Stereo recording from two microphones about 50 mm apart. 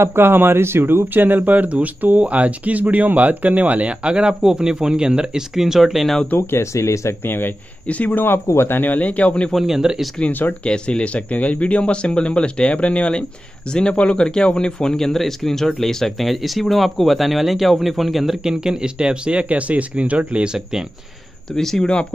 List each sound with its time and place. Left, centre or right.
0.0 s speech: right; by 6.1 s centre
6.6 s speech: left
7.2 s speech: left
7.8 s speech: left
9.7 s speech: centre
10.6 s a man's voice: left; by 20.5 s right
21.5 s speech: centre